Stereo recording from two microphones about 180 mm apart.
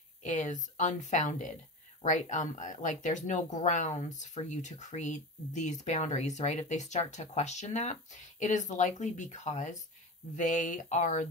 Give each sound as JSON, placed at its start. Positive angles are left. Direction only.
{"t": 0.2, "sound": "a woman's voice", "side_deg": 45}